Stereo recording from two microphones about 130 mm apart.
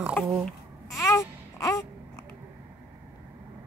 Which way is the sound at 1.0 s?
20° left (ahead or behind).